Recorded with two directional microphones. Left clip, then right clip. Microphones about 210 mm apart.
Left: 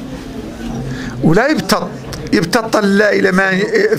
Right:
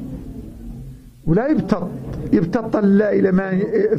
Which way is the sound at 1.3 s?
5° left (ahead or behind).